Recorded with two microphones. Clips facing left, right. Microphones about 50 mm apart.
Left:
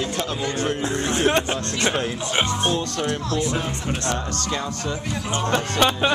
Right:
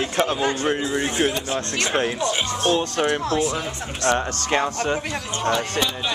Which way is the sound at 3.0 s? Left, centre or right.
Right.